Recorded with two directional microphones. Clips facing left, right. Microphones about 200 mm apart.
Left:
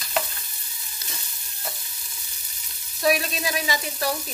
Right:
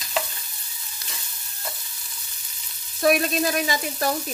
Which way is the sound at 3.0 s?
50° right (ahead or behind).